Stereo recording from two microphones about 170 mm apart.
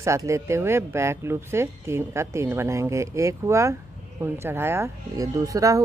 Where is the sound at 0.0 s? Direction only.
15° right (ahead or behind).